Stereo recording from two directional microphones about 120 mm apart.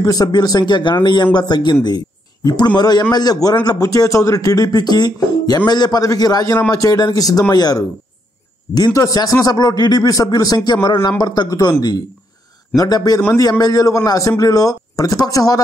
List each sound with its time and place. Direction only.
0.0 s speech: 30° left (ahead or behind)
12.7 s speech: 30° left (ahead or behind)